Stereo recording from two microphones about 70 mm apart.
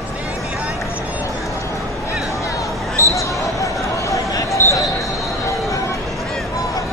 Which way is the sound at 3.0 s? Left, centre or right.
Left.